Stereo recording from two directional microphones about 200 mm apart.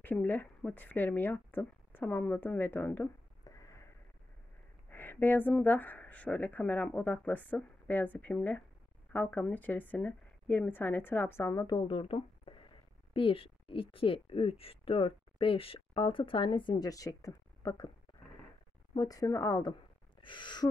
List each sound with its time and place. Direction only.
0.0 s a woman's voice: 10° left (ahead or behind)
18.9 s speech: 20° left (ahead or behind)
20.2 s gasp: 25° left (ahead or behind)